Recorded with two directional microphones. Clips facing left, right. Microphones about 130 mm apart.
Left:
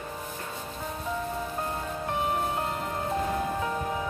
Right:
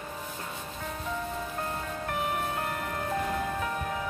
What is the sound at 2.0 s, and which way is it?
Music, 25° left (ahead or behind).